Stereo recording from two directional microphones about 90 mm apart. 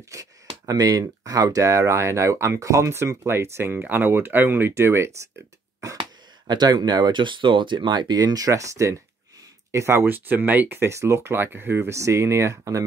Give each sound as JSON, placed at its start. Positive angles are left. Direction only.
{"t": 0.1, "sound": "speech", "side_deg": -35}
{"t": 5.9, "sound": "speech", "side_deg": -50}